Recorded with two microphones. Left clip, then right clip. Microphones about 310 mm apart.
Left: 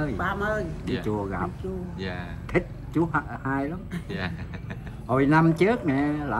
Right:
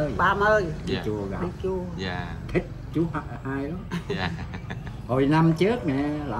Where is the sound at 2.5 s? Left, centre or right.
Centre.